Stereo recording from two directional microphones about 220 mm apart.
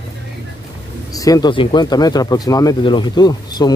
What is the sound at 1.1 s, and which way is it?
Speech, 15° left (ahead or behind).